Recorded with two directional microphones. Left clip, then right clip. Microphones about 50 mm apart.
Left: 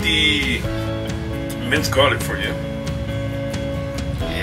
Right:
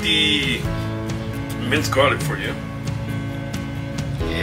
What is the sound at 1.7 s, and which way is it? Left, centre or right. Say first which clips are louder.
Speech: left 1 dB; centre.